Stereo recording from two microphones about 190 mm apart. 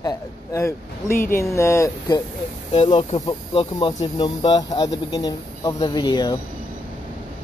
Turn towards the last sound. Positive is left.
turn(degrees=25)  # may be behind; listen again after turning